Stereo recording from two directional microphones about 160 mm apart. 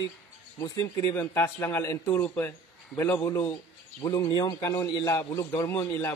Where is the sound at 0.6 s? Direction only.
20° left (ahead or behind).